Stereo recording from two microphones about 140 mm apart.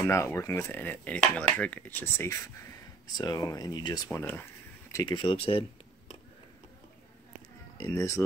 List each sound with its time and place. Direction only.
0.0 s dishes: 20° left (ahead or behind)
3.2 s speech: 25° left (ahead or behind)
4.2 s dishes: 15° left (ahead or behind)
5.0 s speech: 35° left (ahead or behind)
7.8 s speech: 20° left (ahead or behind)